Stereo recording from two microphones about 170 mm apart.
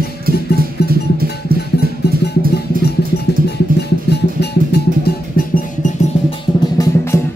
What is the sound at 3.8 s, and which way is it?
Music, 75° left (ahead or behind).